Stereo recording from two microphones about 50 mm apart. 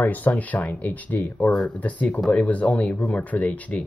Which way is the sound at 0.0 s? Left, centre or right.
Left.